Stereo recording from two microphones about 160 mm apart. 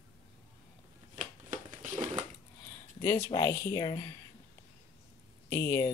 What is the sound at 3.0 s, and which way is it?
Speech, 15° left (ahead or behind).